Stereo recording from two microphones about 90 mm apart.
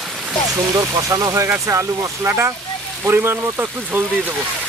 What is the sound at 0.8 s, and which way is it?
Speech, 35° right (ahead or behind).